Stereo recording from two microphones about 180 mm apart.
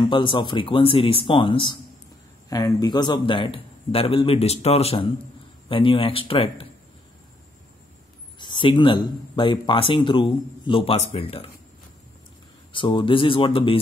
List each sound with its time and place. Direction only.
0.0 s speech: 25° left (ahead or behind)
8.4 s speech: 25° left (ahead or behind)
12.7 s speech: 30° left (ahead or behind)